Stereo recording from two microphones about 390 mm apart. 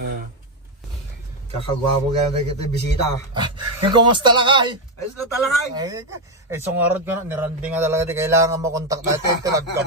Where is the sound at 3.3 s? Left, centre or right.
Centre.